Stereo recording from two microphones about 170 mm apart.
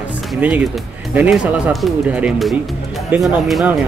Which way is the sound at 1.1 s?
5° right (ahead or behind).